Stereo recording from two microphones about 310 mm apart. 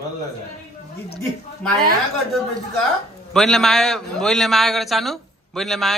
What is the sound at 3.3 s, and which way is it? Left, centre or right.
A man's voice, centre.